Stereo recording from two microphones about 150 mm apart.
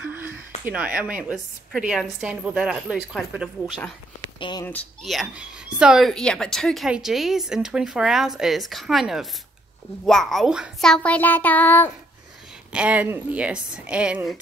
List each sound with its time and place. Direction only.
0.1 s a sound: 10° right (ahead or behind)
0.7 s speech: 10° right (ahead or behind)
4.4 s speech: 30° left (ahead or behind)
5.0 s a child's voice: centre (ahead or behind)
12.7 s speech: 10° right (ahead or behind)